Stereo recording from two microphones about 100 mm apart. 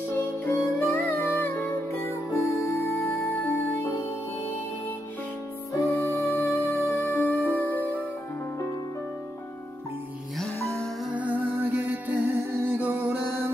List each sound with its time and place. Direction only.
0.5 s music: 25° left (ahead or behind)
5.7 s music: 30° left (ahead or behind)
11.1 s music: 15° right (ahead or behind)